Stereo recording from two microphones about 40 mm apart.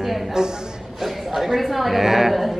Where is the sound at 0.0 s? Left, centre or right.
Centre.